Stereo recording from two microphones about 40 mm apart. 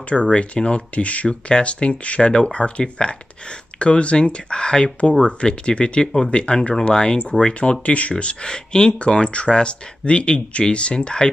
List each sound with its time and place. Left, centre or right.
0.3 s speech: left
7.8 s speech: left
8.1 s speech: left